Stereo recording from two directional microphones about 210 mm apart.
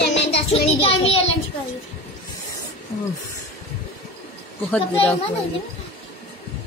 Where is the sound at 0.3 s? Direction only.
25° left (ahead or behind).